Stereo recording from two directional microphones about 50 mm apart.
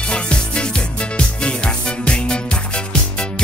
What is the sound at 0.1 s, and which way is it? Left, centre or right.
Music, left.